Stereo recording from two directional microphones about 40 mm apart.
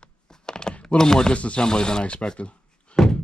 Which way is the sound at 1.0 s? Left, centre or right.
Centre.